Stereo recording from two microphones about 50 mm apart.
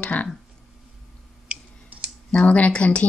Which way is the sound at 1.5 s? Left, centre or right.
Right.